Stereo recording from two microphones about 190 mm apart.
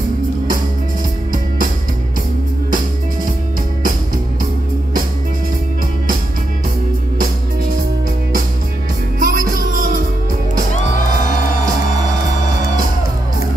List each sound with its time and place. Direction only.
9.2 s music: 45° right (ahead or behind)